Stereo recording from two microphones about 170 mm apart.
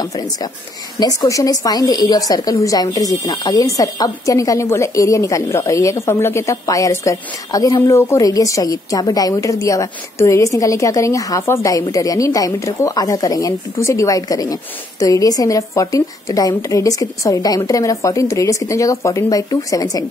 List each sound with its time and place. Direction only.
0.0 s a woman's voice: 20° left (ahead or behind)